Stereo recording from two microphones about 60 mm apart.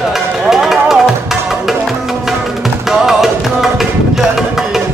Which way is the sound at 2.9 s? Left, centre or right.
Centre.